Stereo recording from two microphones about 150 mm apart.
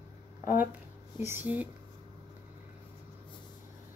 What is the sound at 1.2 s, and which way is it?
Speech, 15° right (ahead or behind).